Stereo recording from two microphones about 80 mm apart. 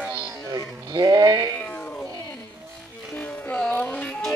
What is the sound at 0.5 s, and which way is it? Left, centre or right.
Sheep, right.